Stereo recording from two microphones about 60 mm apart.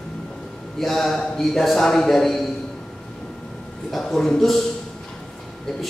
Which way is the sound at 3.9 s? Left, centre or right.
Centre.